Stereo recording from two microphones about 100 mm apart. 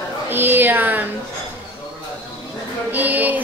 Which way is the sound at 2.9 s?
15° right (ahead or behind).